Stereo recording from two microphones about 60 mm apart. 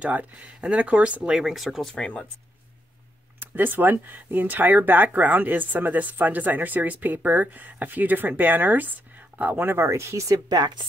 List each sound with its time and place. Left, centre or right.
0.0 s speech: right; by 2.0 s centre
2.0 s speech: centre
3.3 s speech: right
9.8 s speech: right